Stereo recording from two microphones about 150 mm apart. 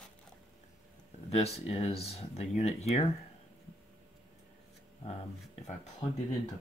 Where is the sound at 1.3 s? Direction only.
45° left (ahead or behind).